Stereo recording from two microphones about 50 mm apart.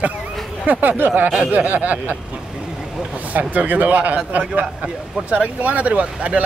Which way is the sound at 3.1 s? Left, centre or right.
Right.